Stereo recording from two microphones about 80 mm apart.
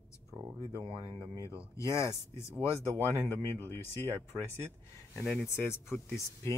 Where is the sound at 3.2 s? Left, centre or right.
Left.